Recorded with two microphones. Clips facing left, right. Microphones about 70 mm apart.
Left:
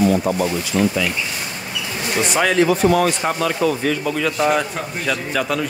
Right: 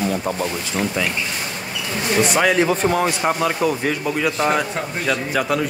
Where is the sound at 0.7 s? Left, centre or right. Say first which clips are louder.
Left 5 dB; centre.